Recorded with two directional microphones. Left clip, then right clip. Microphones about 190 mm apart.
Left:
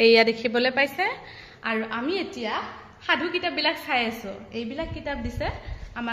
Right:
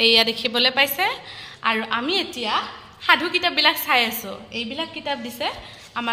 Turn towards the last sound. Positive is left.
turn(degrees=-10)  # may be behind; listen again after turning